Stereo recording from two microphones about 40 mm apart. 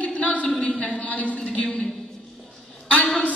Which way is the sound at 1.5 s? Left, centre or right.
Left.